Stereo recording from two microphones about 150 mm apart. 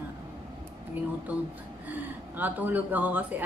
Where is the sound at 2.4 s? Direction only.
10° right (ahead or behind).